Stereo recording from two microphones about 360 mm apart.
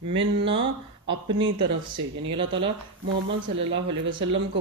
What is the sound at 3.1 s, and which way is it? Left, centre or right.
Speech, right.